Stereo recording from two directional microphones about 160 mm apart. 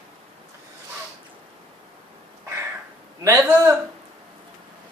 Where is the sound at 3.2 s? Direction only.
15° right (ahead or behind).